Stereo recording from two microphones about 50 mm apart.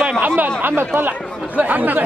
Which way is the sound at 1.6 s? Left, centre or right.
Right.